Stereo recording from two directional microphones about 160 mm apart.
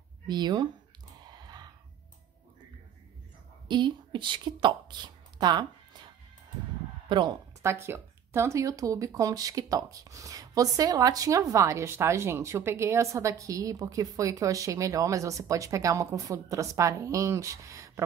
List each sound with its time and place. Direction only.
0.3 s speech: 25° right (ahead or behind)
1.3 s a sound: 25° right (ahead or behind)
3.6 s a woman's voice: 30° right (ahead or behind)
7.1 s speech: 30° right (ahead or behind)
7.6 s speech: 15° right (ahead or behind)